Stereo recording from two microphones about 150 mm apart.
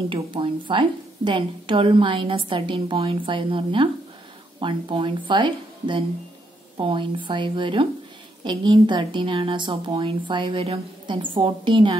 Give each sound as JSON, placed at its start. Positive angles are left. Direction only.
{"t": 0.1, "sound": "a woman's voice", "side_deg": -35}